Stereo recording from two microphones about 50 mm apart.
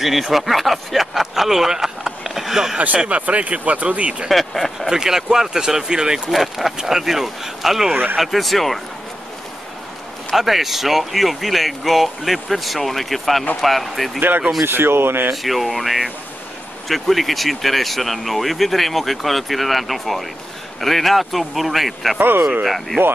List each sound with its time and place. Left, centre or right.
0.0 s speech: centre
3.1 s speech: right
4.3 s speech: centre
4.9 s speech: centre
7.9 s speech: right
8.2 s speech: centre
10.3 s speech: centre
14.6 s speech: right
15.3 s speech: centre
22.2 s speech: right